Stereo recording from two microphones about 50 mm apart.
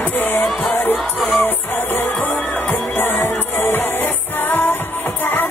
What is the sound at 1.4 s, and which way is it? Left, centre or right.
Music, left.